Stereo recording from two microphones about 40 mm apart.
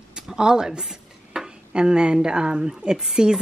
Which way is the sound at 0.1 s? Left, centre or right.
Centre.